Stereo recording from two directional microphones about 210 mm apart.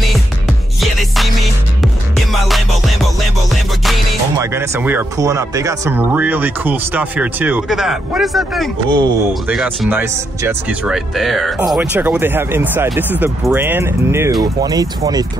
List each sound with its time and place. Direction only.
0.0 s music: centre (ahead or behind)
2.4 s music: centre (ahead or behind)
4.4 s speech: 10° right (ahead or behind)
8.8 s speech: 20° right (ahead or behind)
9.3 s speech: centre (ahead or behind); by 15.2 s 15° right (ahead or behind)